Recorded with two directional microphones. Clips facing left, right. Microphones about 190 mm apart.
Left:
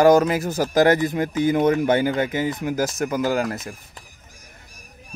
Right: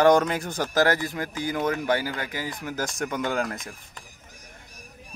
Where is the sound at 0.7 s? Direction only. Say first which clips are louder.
Left 6 dB; 20° left (ahead or behind).